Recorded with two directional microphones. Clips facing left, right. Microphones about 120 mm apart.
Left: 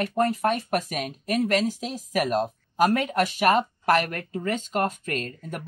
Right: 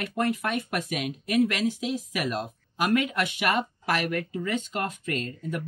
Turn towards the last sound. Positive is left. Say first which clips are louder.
# right 1 dB
turn(degrees=45)  # may be behind; listen again after turning